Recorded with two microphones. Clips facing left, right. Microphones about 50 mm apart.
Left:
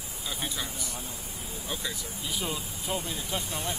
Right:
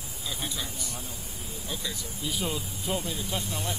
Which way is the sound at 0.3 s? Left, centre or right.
Centre.